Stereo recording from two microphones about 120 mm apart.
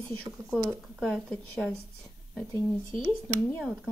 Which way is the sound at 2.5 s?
50° right (ahead or behind).